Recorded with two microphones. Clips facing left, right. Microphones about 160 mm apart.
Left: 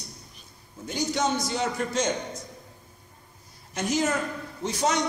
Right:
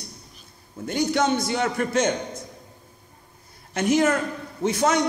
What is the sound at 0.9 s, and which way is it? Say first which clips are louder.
Speech: right 5 dB; 60° right (ahead or behind).